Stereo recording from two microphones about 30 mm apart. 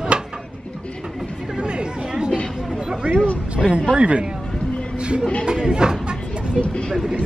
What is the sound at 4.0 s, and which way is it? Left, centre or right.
Speech, right.